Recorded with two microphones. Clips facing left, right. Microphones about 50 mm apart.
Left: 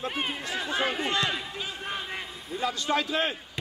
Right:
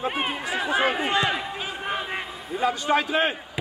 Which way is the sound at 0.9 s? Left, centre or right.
Right.